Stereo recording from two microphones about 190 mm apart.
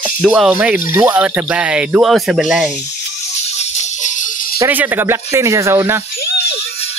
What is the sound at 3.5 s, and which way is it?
Music, 40° left (ahead or behind).